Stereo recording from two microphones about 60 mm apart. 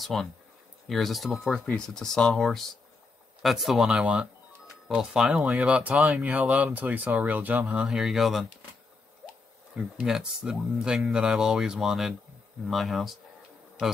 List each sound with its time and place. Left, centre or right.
0.0 s speech: centre
1.5 s speech: centre
3.9 s speech: centre
5.7 s speech: right
7.8 s speech: centre
10.0 s speech: centre